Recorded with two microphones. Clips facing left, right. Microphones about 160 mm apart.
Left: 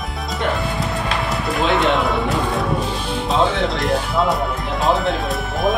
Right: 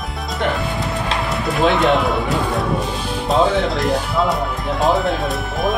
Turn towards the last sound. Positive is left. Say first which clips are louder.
# left 1 dB
turn(degrees=0)  # may be behind; listen again after turning